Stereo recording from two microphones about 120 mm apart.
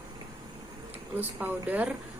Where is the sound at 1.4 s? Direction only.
15° right (ahead or behind).